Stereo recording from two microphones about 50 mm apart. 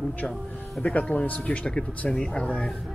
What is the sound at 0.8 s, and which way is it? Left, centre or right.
Speech, left.